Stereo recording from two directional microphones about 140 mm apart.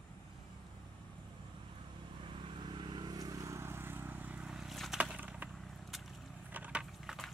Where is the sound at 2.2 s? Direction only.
40° right (ahead or behind); by 5.5 s 10° right (ahead or behind).